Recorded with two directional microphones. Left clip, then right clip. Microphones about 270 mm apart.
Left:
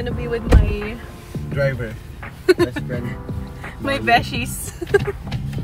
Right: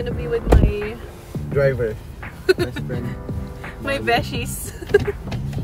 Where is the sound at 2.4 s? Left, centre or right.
Left.